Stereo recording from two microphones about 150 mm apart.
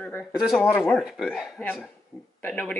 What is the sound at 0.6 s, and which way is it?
Speech, 5° left (ahead or behind).